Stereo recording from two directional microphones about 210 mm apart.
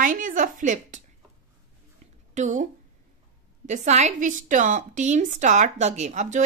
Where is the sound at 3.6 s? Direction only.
35° right (ahead or behind).